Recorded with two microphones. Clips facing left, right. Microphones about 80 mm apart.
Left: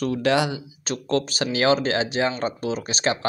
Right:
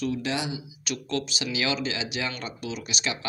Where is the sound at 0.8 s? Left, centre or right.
Left.